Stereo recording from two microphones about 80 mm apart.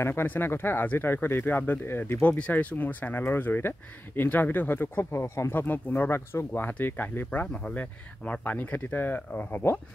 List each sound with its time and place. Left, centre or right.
0.0 s speech: left
2.2 s speech: centre
7.2 s speech: centre